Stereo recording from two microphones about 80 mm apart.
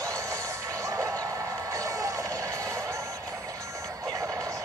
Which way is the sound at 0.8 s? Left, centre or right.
Right.